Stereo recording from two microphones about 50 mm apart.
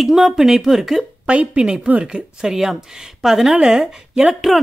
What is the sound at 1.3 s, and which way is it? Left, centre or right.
Speech, right.